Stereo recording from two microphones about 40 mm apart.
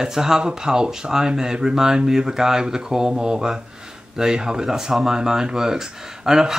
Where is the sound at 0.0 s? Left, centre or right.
Centre.